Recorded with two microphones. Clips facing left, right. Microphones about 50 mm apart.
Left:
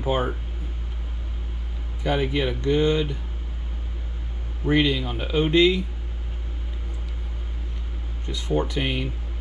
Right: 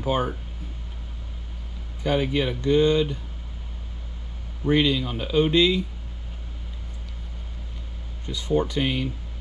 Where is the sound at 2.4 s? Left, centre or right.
Left.